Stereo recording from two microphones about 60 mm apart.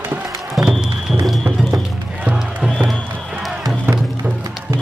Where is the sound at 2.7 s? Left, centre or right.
Centre.